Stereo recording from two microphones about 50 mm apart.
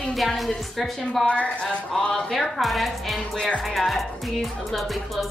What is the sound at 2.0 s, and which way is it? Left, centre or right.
Speech, centre.